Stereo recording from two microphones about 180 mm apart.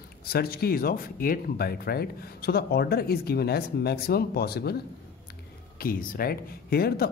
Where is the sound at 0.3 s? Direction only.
60° left (ahead or behind).